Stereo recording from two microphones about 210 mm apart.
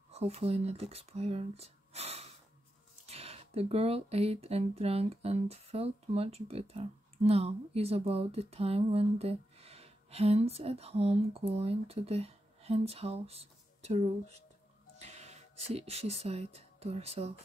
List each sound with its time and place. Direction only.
0.1 s speech: 30° right (ahead or behind)